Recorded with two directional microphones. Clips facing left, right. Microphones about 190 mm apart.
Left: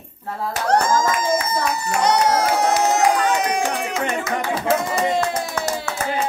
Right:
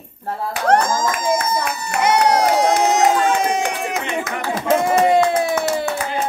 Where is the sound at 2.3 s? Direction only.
15° right (ahead or behind).